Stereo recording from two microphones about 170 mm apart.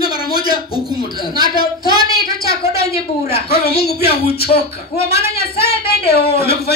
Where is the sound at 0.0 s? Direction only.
60° left (ahead or behind).